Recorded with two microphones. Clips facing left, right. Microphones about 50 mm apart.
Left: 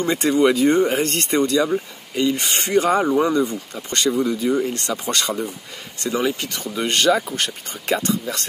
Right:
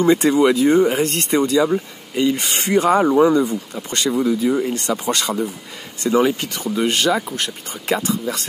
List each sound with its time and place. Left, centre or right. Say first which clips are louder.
0.3 s speech: right 2 dB; centre
5.2 s speech: right 2 dB; centre
6.0 s speech: right 5 dB; right
6.4 s speech: right 3 dB; right
6.7 s speech: even; centre